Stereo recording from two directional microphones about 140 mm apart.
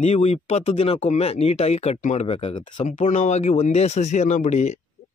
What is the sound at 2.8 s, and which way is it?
Speech, 65° left (ahead or behind).